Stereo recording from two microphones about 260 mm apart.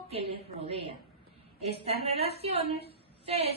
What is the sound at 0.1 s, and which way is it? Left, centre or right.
A woman's voice, right.